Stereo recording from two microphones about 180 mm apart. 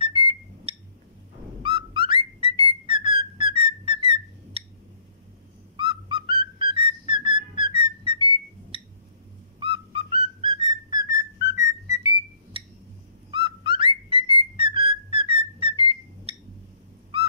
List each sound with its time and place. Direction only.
0.0 s a sound: 30° right (ahead or behind)
1.6 s whistling: 30° right (ahead or behind)
2.7 s whistle: 30° right (ahead or behind)
5.8 s whistle: 25° right (ahead or behind)
9.6 s whistling: 30° right (ahead or behind)
14.4 s whistle: 30° right (ahead or behind)
17.1 s owl: 30° right (ahead or behind)